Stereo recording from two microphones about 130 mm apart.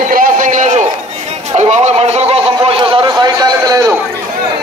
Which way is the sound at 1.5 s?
60° right (ahead or behind).